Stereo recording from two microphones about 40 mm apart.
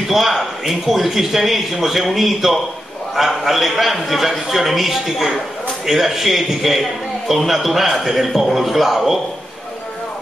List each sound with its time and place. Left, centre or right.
0.1 s a man's voice: centre